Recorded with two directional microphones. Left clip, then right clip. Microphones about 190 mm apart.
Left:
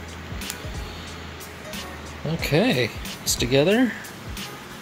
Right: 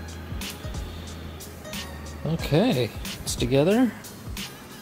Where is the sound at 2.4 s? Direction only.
10° right (ahead or behind).